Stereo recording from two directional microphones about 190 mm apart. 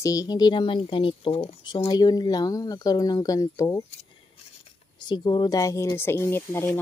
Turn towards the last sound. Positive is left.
turn(degrees=10)  # may be behind; listen again after turning